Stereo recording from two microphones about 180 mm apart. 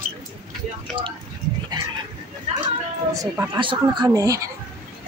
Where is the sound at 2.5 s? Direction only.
40° right (ahead or behind).